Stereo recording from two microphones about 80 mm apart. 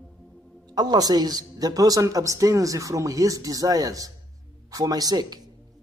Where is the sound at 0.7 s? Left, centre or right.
Right.